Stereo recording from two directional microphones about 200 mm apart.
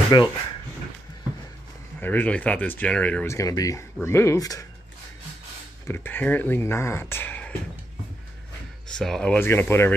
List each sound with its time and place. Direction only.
0.1 s speech: 20° left (ahead or behind)
2.0 s speech: 10° left (ahead or behind)
5.9 s speech: 10° left (ahead or behind)
8.9 s speech: 5° left (ahead or behind)